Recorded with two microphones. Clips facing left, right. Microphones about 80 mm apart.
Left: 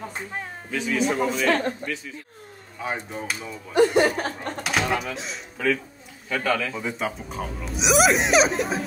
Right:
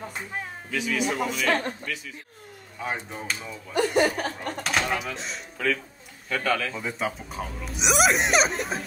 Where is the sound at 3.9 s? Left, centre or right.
Left.